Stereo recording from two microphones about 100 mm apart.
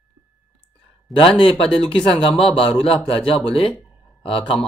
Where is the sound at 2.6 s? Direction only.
65° left (ahead or behind).